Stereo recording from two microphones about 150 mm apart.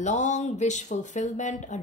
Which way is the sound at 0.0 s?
50° left (ahead or behind).